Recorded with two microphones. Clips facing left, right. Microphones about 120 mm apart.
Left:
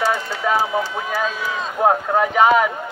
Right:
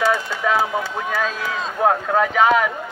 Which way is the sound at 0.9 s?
5° left (ahead or behind).